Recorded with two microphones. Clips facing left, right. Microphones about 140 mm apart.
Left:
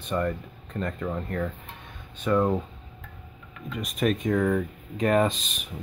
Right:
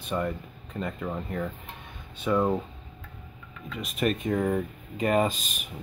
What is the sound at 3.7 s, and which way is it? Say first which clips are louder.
Speech: left 2 dB; centre (ahead or behind).